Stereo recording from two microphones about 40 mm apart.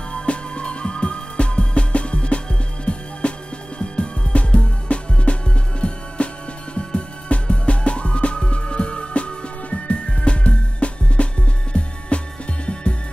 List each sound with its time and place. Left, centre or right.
0.1 s music: left